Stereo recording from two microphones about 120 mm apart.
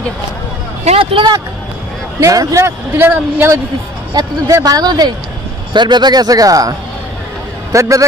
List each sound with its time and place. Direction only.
0.8 s speech: 50° right (ahead or behind)
2.1 s a man's voice: 25° right (ahead or behind)
4.1 s a man's voice: 35° right (ahead or behind)
7.7 s a man's voice: 25° right (ahead or behind)